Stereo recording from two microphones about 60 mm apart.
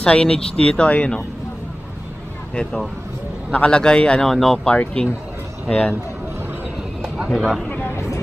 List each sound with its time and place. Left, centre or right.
0.0 s speech: centre
2.5 s speech: centre
4.3 s speech: centre
4.6 s speech: centre
7.2 s speech: centre
7.9 s vehicle: left